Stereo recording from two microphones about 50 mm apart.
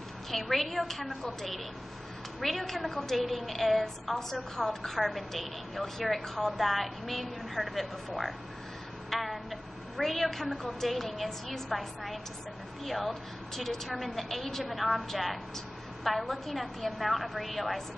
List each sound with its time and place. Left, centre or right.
0.3 s a woman's voice: centre